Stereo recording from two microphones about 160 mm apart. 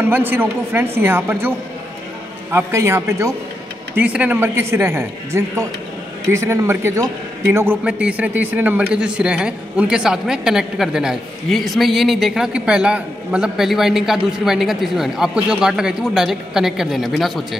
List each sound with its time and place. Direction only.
0.0 s a woman's voice: 10° right (ahead or behind)
2.5 s a woman's voice: 15° right (ahead or behind); by 17.6 s centre (ahead or behind)